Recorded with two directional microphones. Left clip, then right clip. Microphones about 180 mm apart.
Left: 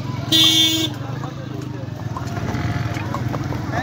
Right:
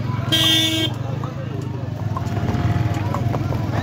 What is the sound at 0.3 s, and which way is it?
Vehicle, 15° left (ahead or behind).